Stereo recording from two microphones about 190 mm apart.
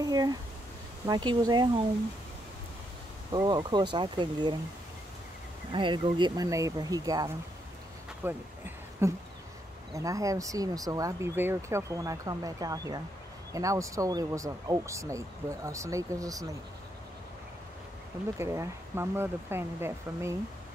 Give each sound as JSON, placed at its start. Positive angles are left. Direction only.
{"t": 0.0, "sound": "speech", "side_deg": -20}
{"t": 3.3, "sound": "speech", "side_deg": -20}
{"t": 5.7, "sound": "speech", "side_deg": -25}
{"t": 8.2, "sound": "a sound", "side_deg": -10}
{"t": 9.9, "sound": "speech", "side_deg": -15}
{"t": 18.4, "sound": "speech", "side_deg": -15}